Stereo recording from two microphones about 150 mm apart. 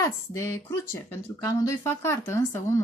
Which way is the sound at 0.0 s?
20° left (ahead or behind).